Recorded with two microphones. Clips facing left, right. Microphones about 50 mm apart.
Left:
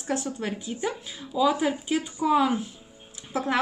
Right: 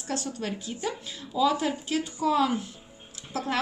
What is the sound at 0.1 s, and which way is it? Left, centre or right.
A woman's voice, centre.